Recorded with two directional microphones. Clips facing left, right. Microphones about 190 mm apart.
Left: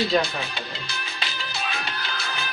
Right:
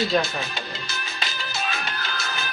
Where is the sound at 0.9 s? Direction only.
45° right (ahead or behind).